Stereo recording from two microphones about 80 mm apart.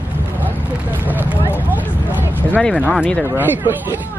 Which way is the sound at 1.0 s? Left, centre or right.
Right.